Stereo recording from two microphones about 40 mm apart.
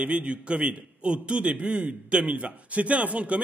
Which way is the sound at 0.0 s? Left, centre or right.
Right.